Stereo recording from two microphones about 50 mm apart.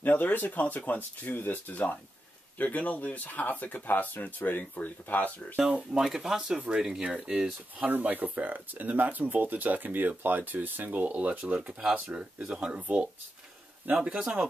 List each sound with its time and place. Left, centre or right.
0.0 s speech: left
5.6 s speech: centre
5.9 s speech: centre
7.7 s speech: right
11.5 s speech: centre